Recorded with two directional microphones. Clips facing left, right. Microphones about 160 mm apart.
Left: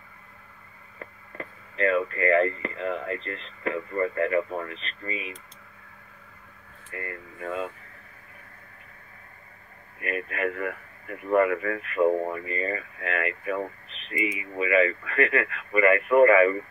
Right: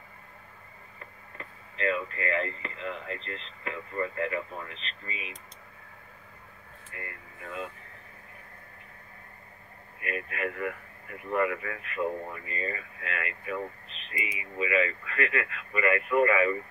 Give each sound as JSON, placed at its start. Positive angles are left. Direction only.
{"t": 1.4, "sound": "speech", "side_deg": 50}
{"t": 7.0, "sound": "speech", "side_deg": 60}
{"t": 10.0, "sound": "speech", "side_deg": 50}
{"t": 14.6, "sound": "speech", "side_deg": 55}